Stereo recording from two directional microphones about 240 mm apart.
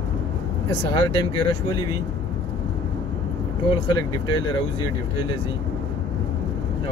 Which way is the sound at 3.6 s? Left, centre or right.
Left.